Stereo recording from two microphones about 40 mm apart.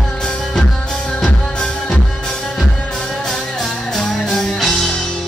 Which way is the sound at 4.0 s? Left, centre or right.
Centre.